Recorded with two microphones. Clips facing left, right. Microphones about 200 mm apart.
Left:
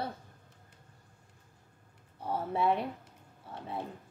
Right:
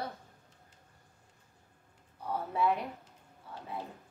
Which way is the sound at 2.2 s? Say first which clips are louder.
Left 1 dB; 30° left (ahead or behind).